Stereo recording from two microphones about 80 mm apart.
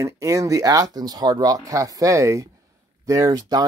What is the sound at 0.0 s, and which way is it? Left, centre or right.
Speech, right.